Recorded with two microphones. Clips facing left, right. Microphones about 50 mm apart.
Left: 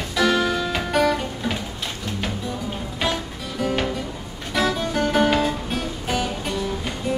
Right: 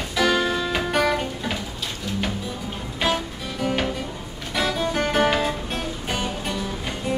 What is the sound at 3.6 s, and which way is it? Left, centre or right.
Music, centre.